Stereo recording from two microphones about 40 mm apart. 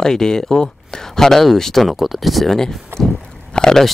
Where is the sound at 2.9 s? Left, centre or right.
Right.